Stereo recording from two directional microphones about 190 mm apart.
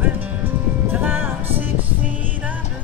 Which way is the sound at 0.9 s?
10° right (ahead or behind).